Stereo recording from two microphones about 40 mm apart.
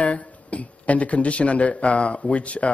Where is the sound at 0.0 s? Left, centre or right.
Left.